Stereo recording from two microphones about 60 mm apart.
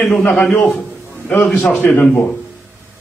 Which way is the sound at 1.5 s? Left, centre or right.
Left.